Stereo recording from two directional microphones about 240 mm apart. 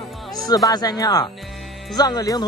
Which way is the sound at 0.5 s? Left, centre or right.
Centre.